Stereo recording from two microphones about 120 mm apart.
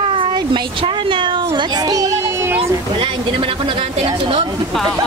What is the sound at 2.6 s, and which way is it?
A woman's voice, 45° right (ahead or behind).